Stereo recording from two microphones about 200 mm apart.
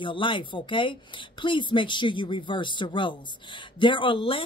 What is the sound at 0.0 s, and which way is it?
A woman's voice, 25° left (ahead or behind).